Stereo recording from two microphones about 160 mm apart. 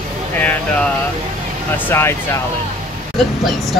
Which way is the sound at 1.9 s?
15° left (ahead or behind).